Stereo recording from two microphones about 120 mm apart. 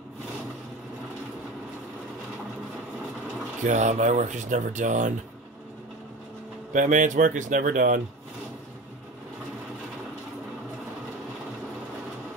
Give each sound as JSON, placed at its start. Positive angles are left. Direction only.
{"t": 3.6, "sound": "speech", "side_deg": -80}
{"t": 6.7, "sound": "speech", "side_deg": -90}